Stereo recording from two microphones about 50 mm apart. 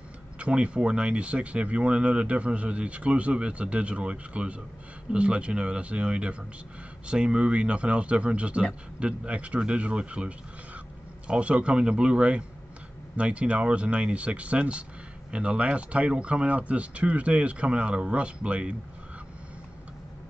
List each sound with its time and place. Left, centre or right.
0.4 s speech: right